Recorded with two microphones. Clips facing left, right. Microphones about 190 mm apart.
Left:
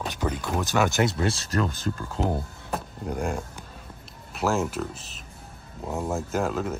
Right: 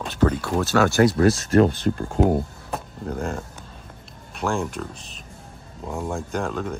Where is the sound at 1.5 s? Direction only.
40° right (ahead or behind).